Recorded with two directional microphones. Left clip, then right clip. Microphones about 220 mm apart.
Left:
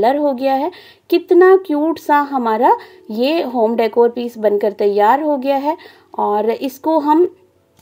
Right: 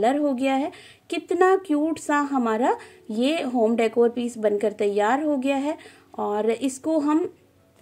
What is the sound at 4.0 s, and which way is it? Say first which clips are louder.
Speech: left 8 dB; 30° left (ahead or behind).